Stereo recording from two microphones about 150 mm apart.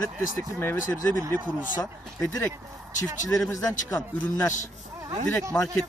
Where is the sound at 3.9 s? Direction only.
15° left (ahead or behind).